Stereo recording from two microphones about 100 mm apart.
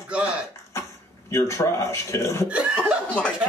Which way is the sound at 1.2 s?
30° left (ahead or behind).